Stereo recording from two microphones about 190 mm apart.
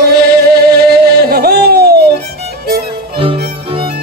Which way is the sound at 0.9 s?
55° right (ahead or behind).